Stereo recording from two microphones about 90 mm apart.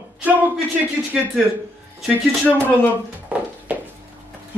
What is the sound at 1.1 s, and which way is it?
Speech, 5° right (ahead or behind).